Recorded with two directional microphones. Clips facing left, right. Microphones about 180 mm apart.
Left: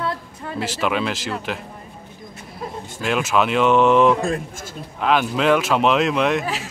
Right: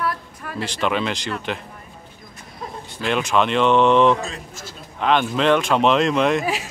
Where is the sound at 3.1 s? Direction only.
5° left (ahead or behind).